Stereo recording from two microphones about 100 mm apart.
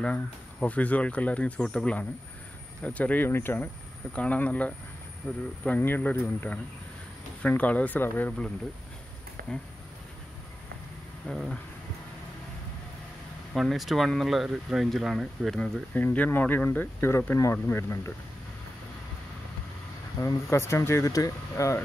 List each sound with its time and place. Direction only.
0.0 s speech: 10° left (ahead or behind)
11.2 s speech: 5° left (ahead or behind)
13.5 s speech: centre (ahead or behind)
15.6 s speech: 15° left (ahead or behind)
20.2 s speech: 30° left (ahead or behind)